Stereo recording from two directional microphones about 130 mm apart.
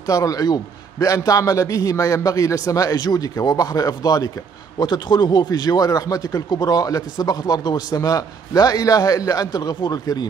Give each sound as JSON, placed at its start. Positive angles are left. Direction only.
{"t": 0.0, "sound": "speech", "side_deg": 25}